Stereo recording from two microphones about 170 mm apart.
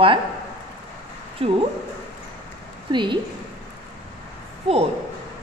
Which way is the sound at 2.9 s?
25° right (ahead or behind).